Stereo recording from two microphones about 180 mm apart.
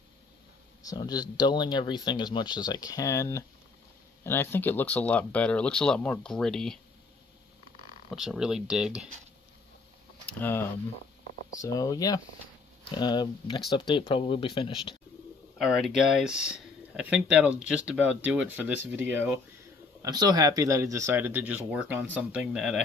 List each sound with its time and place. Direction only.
0.8 s speech: 20° left (ahead or behind); by 6.8 s 5° left (ahead or behind)
8.1 s speech: centre (ahead or behind)
10.2 s speech: 10° left (ahead or behind); by 15.0 s 30° left (ahead or behind)
15.5 s speech: centre (ahead or behind)
20.0 s speech: 20° right (ahead or behind); by 22.8 s centre (ahead or behind)